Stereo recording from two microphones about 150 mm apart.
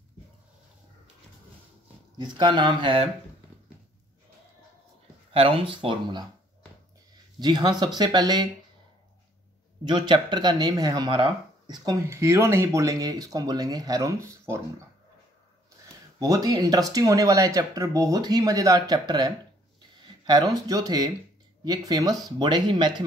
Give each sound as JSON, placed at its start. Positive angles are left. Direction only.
{"t": 2.1, "sound": "speech", "side_deg": -30}
{"t": 5.3, "sound": "speech", "side_deg": -40}
{"t": 7.3, "sound": "speech", "side_deg": -25}
{"t": 9.8, "sound": "speech", "side_deg": -30}
{"t": 16.2, "sound": "speech", "side_deg": -25}